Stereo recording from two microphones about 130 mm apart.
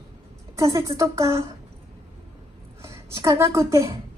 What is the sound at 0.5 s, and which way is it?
Speech, 25° right (ahead or behind).